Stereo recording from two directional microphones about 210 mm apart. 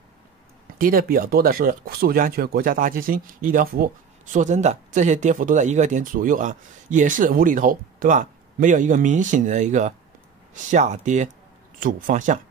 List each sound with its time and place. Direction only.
0.7 s speech: 40° right (ahead or behind)